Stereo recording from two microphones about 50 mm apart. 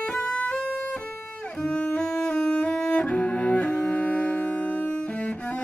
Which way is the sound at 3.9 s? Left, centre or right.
Left.